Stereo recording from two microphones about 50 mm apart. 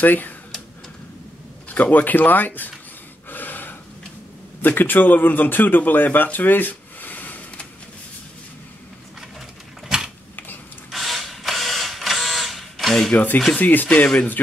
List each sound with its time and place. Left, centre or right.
0.0 s speech: left
1.7 s speech: left
3.3 s gasp: left
4.6 s speech: left
9.8 s a sound: centre
10.9 s printer: centre
13.1 s speech: left
13.8 s speech: centre